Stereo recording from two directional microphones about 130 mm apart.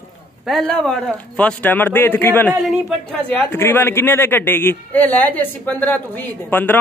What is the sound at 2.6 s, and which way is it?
Speech, 5° left (ahead or behind).